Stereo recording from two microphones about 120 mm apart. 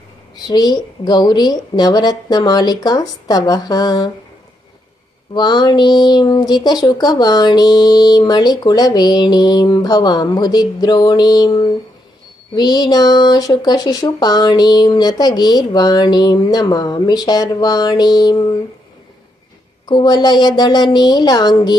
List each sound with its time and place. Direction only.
0.5 s speech: 35° left (ahead or behind)
5.3 s speech: 35° left (ahead or behind)
19.9 s speech: 35° left (ahead or behind)